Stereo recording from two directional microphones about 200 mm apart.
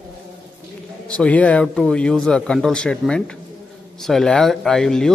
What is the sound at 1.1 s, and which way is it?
A man's voice, 5° left (ahead or behind).